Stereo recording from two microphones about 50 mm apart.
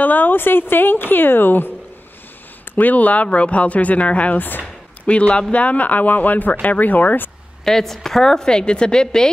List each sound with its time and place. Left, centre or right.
0.0 s speech: left
2.7 s speech: left
5.0 s speech: left
7.6 s a woman's voice: centre